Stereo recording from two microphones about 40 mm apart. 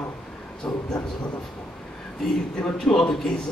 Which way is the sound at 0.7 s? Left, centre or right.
Left.